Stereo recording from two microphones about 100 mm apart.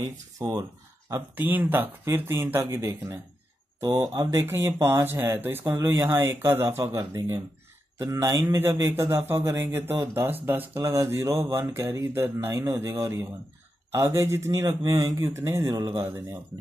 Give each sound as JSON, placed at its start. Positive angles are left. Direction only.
{"t": 0.0, "sound": "speech", "side_deg": -40}
{"t": 1.3, "sound": "speech", "side_deg": -20}
{"t": 3.8, "sound": "speech", "side_deg": -45}